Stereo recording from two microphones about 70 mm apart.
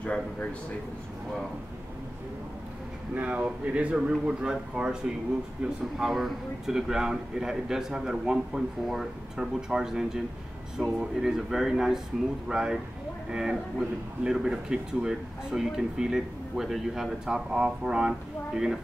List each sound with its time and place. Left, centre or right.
0.0 s a man's voice: centre
3.2 s speech: centre